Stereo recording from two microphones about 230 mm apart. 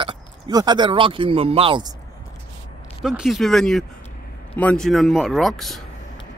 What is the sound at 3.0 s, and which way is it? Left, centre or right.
Speech, centre.